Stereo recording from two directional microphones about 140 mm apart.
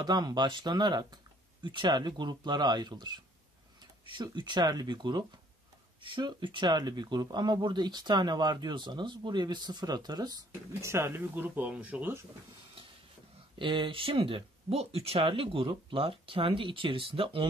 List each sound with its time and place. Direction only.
0.0 s speech: 30° right (ahead or behind); by 12.2 s 10° right (ahead or behind)
13.6 s speech: 35° right (ahead or behind)